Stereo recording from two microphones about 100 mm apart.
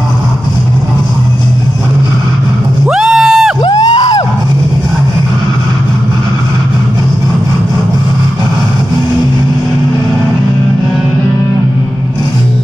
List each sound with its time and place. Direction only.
2.9 s crowd: 5° right (ahead or behind)
3.8 s music: 90° left